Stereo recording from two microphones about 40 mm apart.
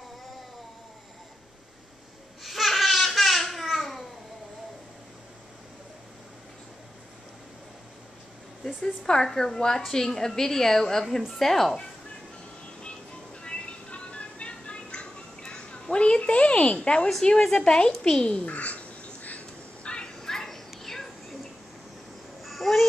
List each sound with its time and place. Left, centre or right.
2.4 s babbling: centre
8.8 s a woman's voice: centre
13.4 s music: left
17.2 s a woman's voice: centre
18.2 s a sound: left
19.9 s a sound: centre
22.4 s babbling: centre